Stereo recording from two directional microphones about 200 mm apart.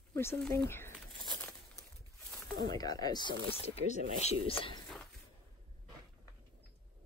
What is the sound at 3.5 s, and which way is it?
Speech, 35° left (ahead or behind).